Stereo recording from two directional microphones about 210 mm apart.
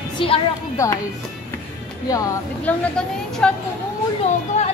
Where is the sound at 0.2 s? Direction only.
20° left (ahead or behind).